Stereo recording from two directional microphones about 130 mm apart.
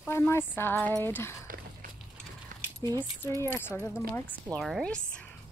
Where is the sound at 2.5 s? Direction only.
85° right.